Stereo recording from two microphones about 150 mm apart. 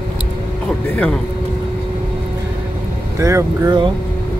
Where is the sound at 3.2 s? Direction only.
20° right (ahead or behind).